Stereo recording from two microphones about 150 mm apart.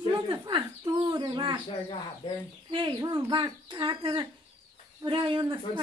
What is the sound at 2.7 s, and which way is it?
Speech, 30° right (ahead or behind).